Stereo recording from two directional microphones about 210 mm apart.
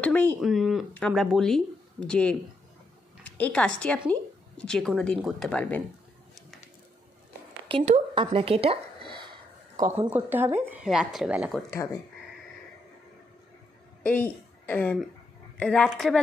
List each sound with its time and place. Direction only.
0.0 s speech: 10° left (ahead or behind)
7.6 s speech: 30° right (ahead or behind)
9.8 s speech: 10° right (ahead or behind)
14.0 s a woman's voice: 10° left (ahead or behind)